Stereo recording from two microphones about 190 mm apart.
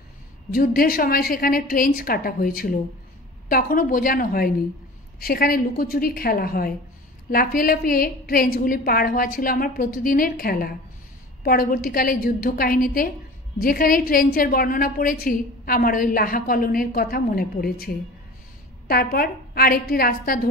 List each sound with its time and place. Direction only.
0.5 s a woman's voice: 50° left (ahead or behind)